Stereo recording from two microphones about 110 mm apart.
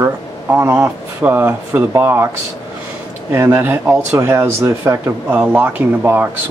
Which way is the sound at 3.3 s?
20° right (ahead or behind).